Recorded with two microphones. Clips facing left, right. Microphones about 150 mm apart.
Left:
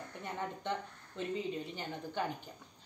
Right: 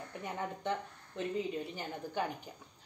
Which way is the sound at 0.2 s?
5° right (ahead or behind).